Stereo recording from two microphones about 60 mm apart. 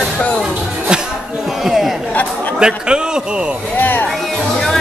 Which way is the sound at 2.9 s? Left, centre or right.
Centre.